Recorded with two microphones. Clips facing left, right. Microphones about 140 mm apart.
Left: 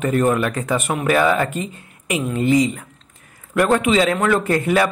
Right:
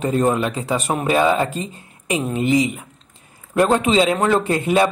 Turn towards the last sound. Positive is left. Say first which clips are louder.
# even
turn(degrees=-20)  # may be behind; listen again after turning